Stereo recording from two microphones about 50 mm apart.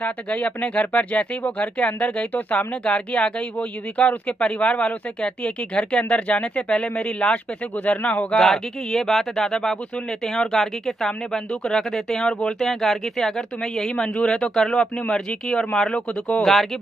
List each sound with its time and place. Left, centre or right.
0.0 s speech: left
8.4 s speech: centre